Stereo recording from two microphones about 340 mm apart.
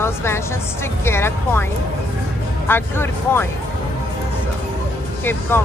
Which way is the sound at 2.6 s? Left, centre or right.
Centre.